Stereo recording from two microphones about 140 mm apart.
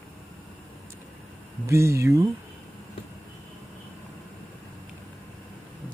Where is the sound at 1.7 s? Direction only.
20° right (ahead or behind).